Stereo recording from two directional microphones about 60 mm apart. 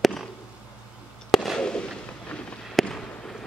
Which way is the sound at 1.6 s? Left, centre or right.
Centre.